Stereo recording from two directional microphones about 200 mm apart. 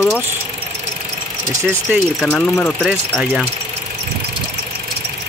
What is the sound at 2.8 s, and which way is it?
Speech, centre (ahead or behind).